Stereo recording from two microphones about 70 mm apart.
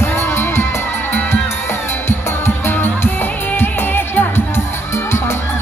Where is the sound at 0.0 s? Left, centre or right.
Left.